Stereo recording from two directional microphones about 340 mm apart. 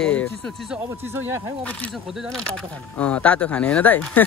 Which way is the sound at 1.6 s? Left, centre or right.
Centre.